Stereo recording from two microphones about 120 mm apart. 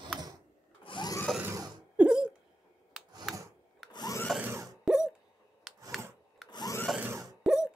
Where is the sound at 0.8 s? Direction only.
45° left (ahead or behind).